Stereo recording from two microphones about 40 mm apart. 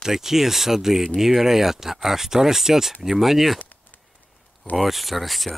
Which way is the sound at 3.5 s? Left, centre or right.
Left.